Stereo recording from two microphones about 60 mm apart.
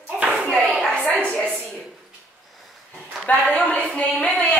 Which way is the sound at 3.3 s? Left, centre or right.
Left.